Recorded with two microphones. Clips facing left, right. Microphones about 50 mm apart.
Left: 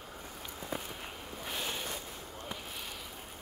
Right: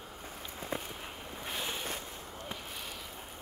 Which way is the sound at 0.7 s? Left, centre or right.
Right.